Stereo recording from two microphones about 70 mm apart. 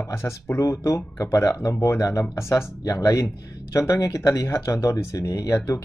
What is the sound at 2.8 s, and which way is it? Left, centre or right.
Speech, left.